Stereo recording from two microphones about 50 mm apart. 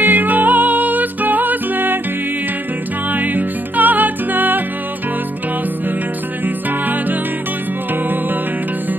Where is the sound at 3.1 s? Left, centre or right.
Right.